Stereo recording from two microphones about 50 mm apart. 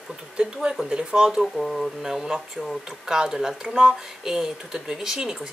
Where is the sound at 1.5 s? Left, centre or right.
Centre.